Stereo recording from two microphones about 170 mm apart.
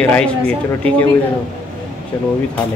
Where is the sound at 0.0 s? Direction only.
5° left (ahead or behind).